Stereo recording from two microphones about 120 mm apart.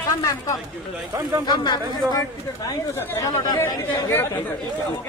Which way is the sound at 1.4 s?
40° left (ahead or behind).